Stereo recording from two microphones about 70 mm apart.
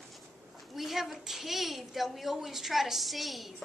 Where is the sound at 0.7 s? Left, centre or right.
Centre.